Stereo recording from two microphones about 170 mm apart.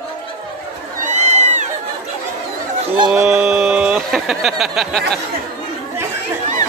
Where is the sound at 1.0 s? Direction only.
40° right (ahead or behind).